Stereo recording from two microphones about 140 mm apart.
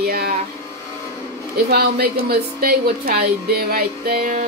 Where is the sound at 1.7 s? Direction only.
90° right.